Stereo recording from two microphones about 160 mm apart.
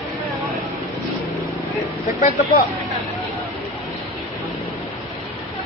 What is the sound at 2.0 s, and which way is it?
Speech, 55° left (ahead or behind).